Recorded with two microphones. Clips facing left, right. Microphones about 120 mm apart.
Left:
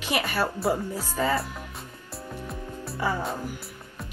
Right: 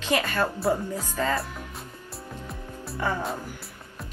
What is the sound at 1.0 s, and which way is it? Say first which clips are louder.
Speech: left 1 dB; 10° left (ahead or behind).